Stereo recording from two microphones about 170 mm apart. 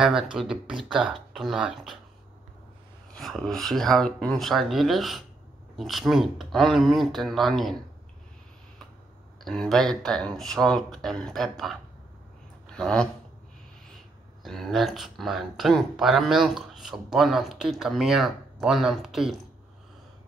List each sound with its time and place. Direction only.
0.0 s speech: 5° right (ahead or behind)
3.1 s speech: centre (ahead or behind)
9.4 s speech: centre (ahead or behind)
14.4 s speech: centre (ahead or behind)